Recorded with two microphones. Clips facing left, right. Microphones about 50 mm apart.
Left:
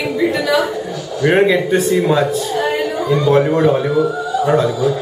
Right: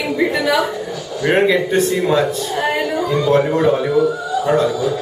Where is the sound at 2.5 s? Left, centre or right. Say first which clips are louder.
Even; centre.